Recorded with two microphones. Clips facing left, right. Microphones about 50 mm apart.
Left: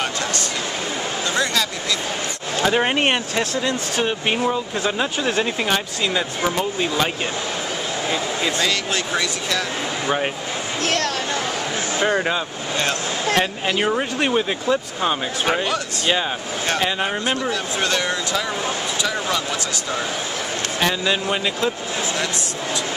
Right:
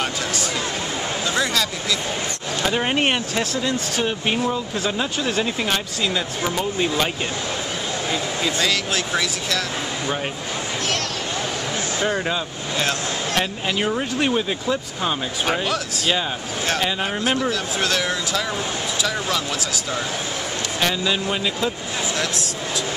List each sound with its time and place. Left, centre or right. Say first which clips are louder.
1.3 s a sound: left 1 dB; centre
2.6 s speech: left 2 dB; centre
8.1 s speech: left 1 dB; centre
12.0 s speech: left 3 dB; centre
13.4 s speech: even; centre
20.8 s speech: left 1 dB; centre